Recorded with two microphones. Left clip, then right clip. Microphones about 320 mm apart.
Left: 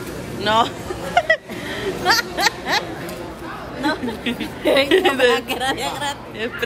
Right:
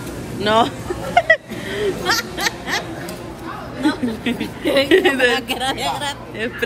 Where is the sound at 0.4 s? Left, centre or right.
Centre.